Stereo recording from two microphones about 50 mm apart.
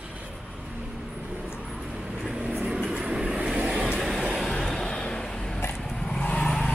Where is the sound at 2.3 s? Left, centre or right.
Centre.